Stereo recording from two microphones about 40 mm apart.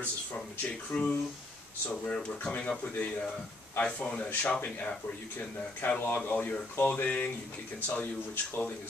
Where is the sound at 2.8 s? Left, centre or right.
Left.